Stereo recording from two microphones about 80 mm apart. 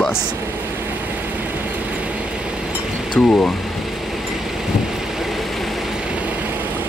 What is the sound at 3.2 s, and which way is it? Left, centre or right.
Speech, centre.